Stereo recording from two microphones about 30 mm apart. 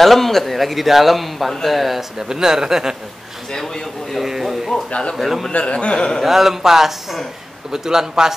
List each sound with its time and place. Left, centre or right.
0.0 s a man's voice: centre
2.1 s a man's voice: right
3.5 s a man's voice: centre
4.2 s a man's voice: centre
5.5 s a man's voice: left
5.9 s speech: centre
6.2 s a man's voice: centre